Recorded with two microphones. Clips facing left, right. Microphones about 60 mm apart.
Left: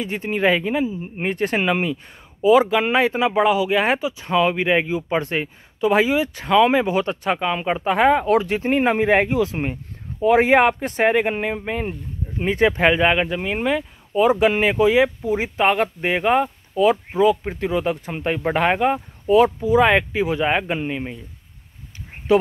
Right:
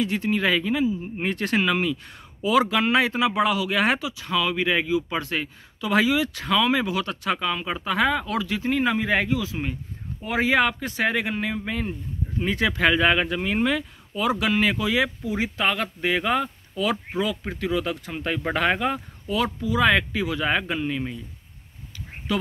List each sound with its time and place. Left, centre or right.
0.0 s speech: left
19.2 s speech: left
22.3 s speech: left